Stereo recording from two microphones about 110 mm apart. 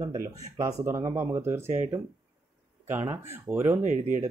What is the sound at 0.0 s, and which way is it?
Speech, 35° right (ahead or behind).